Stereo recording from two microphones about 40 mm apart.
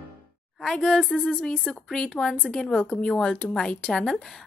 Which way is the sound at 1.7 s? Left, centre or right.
Centre.